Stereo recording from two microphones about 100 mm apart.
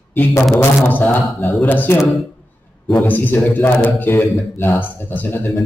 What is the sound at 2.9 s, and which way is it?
A man's voice, 20° left (ahead or behind).